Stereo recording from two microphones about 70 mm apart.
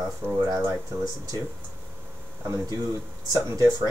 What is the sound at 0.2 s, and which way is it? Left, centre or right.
Speech, right.